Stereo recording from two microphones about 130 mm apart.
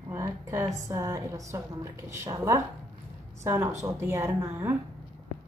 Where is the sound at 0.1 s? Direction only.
25° right (ahead or behind).